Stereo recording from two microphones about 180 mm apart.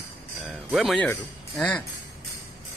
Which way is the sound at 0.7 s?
Centre (ahead or behind).